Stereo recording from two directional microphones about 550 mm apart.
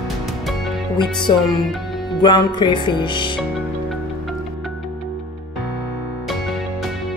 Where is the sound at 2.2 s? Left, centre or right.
Centre.